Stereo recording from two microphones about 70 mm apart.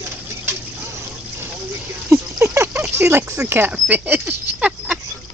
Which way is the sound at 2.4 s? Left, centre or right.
Right.